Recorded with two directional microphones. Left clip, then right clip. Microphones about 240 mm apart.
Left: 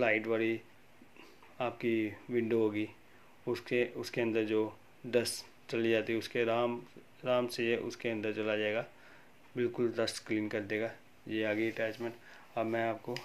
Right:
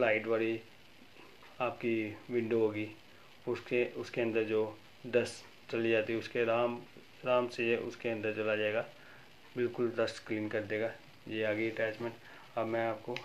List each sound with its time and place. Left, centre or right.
0.0 s speech: left
1.6 s speech: left